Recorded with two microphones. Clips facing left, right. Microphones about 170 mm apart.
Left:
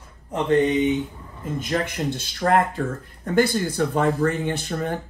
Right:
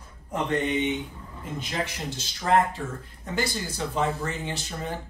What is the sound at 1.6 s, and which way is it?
Speech, 55° left (ahead or behind).